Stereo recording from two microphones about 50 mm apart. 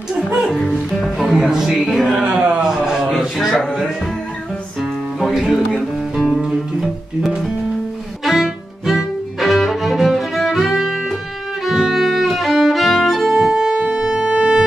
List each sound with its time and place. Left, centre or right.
1.1 s music: centre
2.2 s a sound: right
2.6 s a sound: centre
3.5 s music: centre
5.2 s speech: centre
6.1 s music: centre
8.2 s music: centre
13.4 s music: centre